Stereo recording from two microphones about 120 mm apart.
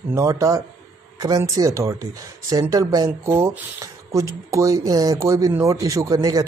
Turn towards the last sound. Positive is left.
turn(degrees=-30)  # may be behind; listen again after turning